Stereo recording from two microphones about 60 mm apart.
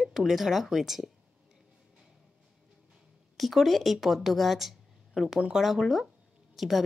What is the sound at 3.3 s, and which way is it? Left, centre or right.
A woman's voice, centre.